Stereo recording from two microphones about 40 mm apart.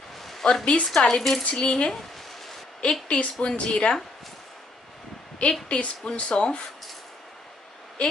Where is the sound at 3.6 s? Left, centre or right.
Left.